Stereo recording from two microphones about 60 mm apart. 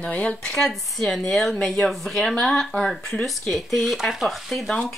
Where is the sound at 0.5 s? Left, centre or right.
Centre.